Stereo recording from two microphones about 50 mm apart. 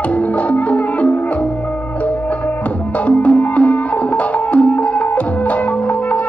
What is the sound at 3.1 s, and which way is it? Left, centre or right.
Music, left.